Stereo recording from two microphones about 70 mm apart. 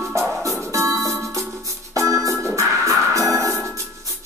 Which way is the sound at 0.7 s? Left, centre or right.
Right.